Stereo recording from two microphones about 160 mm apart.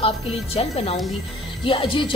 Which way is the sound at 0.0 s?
40° left (ahead or behind).